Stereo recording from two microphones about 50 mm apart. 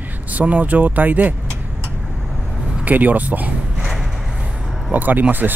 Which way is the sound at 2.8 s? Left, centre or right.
Right.